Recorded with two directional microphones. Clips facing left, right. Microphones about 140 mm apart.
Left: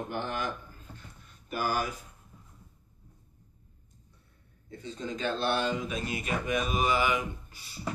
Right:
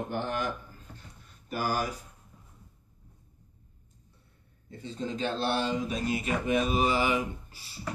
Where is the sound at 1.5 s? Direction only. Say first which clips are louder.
Even; 35° right (ahead or behind).